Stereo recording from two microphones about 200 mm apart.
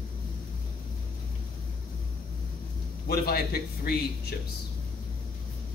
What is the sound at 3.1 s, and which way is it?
Speech, 50° left (ahead or behind).